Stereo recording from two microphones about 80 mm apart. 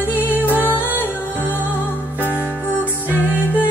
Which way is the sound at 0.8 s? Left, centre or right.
Right.